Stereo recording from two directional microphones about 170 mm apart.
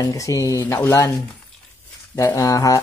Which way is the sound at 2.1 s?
20° left (ahead or behind).